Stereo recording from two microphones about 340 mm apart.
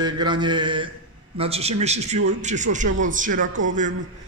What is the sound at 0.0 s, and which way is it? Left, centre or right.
Mantra, centre.